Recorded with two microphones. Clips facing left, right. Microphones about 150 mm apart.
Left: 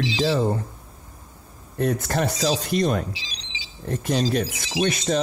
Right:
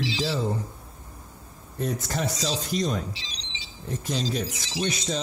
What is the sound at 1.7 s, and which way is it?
Speech, 60° left (ahead or behind).